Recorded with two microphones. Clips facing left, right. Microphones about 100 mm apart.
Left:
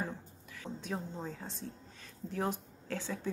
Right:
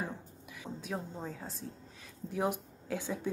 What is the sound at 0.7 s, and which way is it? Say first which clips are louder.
Speech: even; 5° right (ahead or behind).